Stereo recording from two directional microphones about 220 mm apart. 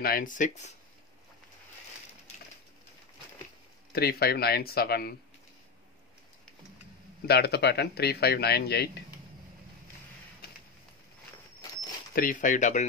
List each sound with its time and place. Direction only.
0.0 s speech: 40° left (ahead or behind)
3.9 s a man's voice: 45° left (ahead or behind)
7.2 s a man's voice: 50° left (ahead or behind)
12.2 s speech: 35° left (ahead or behind)